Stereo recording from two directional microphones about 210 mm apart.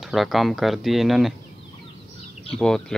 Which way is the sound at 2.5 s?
5° left (ahead or behind).